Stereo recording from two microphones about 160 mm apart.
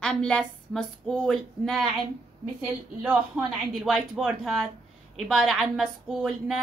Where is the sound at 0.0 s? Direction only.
5° left (ahead or behind).